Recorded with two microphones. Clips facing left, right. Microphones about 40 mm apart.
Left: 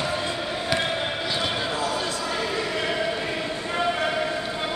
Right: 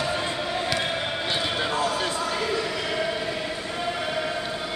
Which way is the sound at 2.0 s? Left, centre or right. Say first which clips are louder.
Right 1 dB; right.